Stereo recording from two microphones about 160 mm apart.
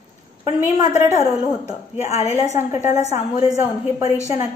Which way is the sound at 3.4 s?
20° right (ahead or behind).